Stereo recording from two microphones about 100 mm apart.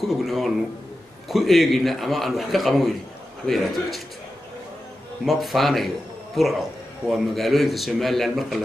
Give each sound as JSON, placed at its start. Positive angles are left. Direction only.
{"t": 0.0, "sound": "a man's voice", "side_deg": 0}
{"t": 5.2, "sound": "a man's voice", "side_deg": 0}